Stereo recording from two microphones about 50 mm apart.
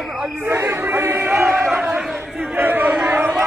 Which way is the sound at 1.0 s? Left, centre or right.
Right.